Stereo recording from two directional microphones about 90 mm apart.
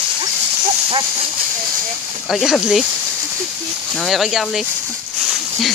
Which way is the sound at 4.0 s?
Centre (ahead or behind).